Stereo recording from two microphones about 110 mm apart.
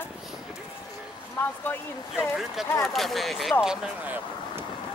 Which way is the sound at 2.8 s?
Centre (ahead or behind).